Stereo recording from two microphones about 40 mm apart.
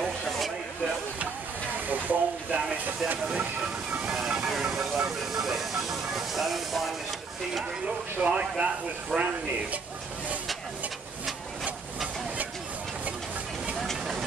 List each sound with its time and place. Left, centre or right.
1.9 s speech: right
4.6 s speech: centre
8.2 s speech: right
9.1 s speech: centre